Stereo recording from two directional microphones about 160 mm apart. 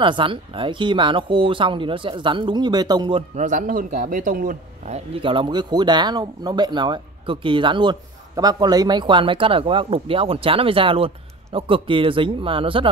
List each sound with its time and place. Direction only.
0.0 s speech: 30° right (ahead or behind)
3.3 s a man's voice: 50° right (ahead or behind)
4.9 s speech: 35° right (ahead or behind)